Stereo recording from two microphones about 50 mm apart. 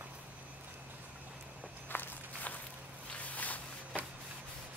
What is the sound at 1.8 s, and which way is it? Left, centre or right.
Walk, left.